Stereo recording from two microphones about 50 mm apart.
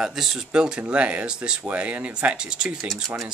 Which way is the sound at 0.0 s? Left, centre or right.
Centre.